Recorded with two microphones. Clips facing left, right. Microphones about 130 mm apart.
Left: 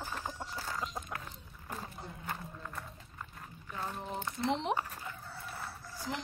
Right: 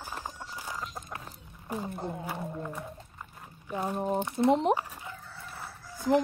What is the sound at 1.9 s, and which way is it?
Speech, 55° right (ahead or behind).